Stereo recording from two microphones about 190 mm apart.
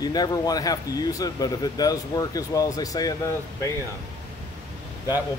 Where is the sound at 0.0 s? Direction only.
20° left (ahead or behind).